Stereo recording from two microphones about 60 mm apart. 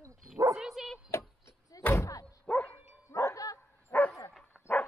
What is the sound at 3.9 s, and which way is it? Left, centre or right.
Dog, left.